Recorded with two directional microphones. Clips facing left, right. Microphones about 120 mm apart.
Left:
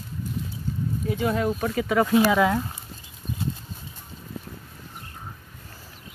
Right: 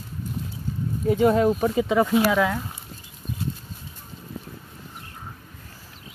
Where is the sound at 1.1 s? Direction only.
40° right (ahead or behind).